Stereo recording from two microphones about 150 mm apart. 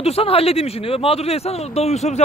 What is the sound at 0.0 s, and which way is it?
Speech, 40° left (ahead or behind).